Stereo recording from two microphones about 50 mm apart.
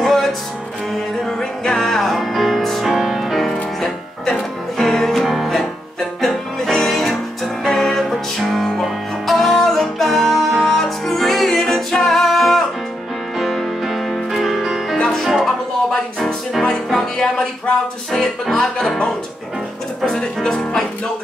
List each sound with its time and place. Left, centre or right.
0.0 s music: centre
1.4 s music: centre
6.2 s music: centre
15.0 s music: centre
15.2 s music: centre
16.6 s music: centre
20.4 s music: centre